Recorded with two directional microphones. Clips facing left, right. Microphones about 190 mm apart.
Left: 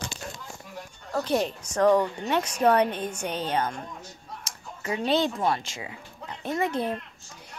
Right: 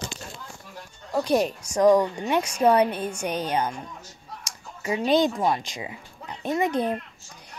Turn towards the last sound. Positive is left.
turn(degrees=-15)  # may be behind; listen again after turning